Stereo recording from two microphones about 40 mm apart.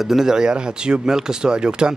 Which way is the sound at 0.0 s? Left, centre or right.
Centre.